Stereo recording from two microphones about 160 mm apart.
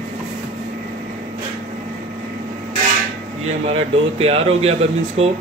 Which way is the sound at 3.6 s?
35° right (ahead or behind).